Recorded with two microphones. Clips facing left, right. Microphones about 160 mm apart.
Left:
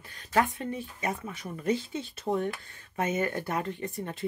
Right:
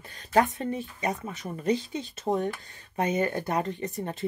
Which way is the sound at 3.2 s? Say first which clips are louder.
Right 3 dB; 30° right (ahead or behind).